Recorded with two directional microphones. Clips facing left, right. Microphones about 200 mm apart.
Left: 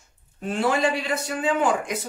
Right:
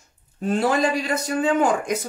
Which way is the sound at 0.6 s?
40° right (ahead or behind).